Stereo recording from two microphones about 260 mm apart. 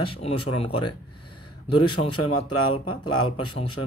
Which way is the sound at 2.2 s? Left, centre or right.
Left.